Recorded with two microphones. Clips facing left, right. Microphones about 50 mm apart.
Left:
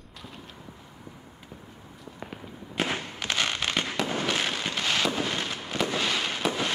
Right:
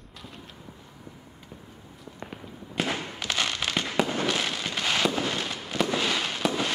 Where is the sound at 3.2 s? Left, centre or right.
Left.